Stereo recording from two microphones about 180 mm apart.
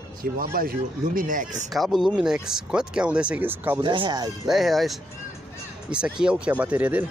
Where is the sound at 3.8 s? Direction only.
25° right (ahead or behind).